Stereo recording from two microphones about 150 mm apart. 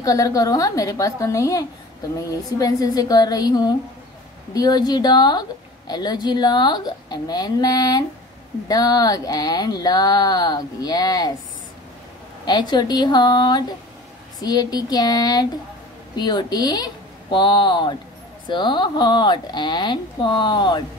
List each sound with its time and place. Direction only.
0.0 s speech: 20° left (ahead or behind)
12.4 s a woman's voice: 30° left (ahead or behind)